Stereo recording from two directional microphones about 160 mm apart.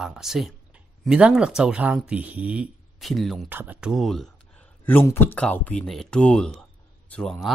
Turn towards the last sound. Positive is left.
turn(degrees=5)  # may be behind; listen again after turning